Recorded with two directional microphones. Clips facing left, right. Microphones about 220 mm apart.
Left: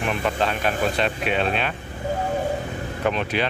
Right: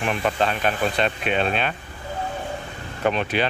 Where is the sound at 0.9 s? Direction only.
5° left (ahead or behind).